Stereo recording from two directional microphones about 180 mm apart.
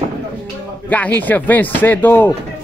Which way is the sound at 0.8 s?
10° left (ahead or behind).